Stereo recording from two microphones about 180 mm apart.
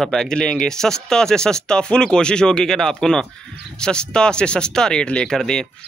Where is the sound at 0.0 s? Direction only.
5° left (ahead or behind).